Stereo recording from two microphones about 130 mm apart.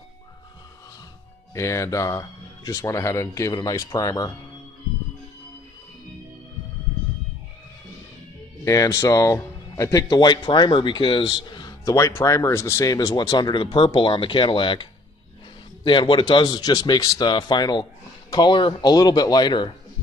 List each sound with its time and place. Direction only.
1.5 s speech: 25° left (ahead or behind)
8.6 s speech: 25° left (ahead or behind)